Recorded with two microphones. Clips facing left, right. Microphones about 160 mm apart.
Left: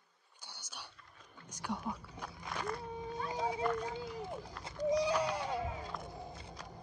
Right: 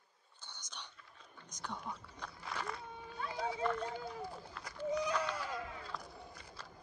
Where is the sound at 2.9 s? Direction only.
40° left (ahead or behind).